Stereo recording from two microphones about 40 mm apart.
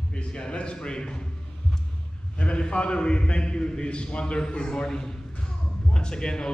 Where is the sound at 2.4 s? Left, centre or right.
Left.